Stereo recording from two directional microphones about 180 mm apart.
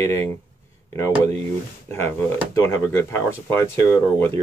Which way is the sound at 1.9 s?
15° left (ahead or behind).